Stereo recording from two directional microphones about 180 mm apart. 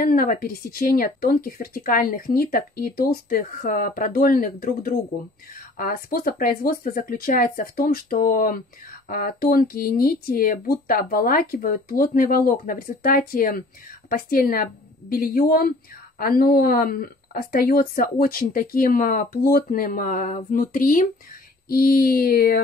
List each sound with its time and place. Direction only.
0.0 s speech: 55° left (ahead or behind)